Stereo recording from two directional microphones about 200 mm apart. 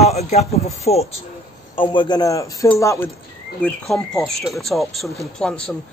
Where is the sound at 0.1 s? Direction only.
30° left (ahead or behind); by 3.1 s 15° left (ahead or behind).